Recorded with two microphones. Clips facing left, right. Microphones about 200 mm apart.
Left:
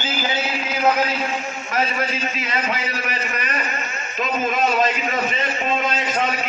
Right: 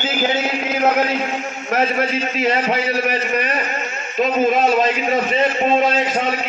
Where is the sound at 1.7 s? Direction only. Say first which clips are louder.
Right 5 dB; 45° right (ahead or behind).